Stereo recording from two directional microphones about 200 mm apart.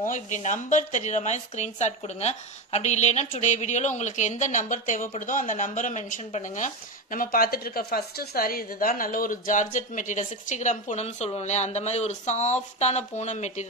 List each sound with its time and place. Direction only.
0.0 s speech: 40° left (ahead or behind)